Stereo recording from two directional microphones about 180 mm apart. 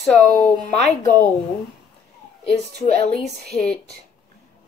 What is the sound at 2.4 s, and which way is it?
Speech, 35° left (ahead or behind).